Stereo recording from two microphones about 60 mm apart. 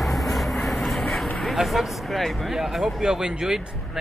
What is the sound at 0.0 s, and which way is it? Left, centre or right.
Vehicle, centre.